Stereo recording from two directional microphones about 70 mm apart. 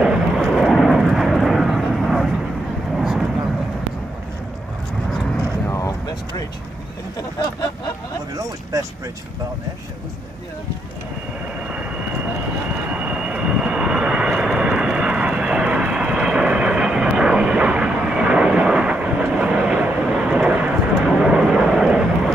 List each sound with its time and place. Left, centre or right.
0.0 s vehicle: centre
5.7 s vehicle: left
11.6 s vehicle: centre